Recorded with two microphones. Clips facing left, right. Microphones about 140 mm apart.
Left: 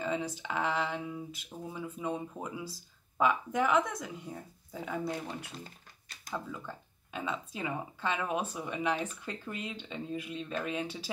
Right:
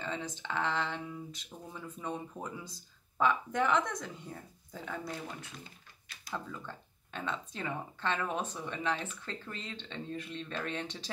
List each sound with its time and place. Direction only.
0.0 s speech: 10° left (ahead or behind)
5.6 s a sound: 40° left (ahead or behind)
6.3 s speech: 5° left (ahead or behind)